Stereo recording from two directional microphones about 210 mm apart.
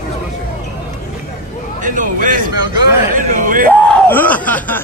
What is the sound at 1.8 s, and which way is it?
A man's voice, 40° right (ahead or behind).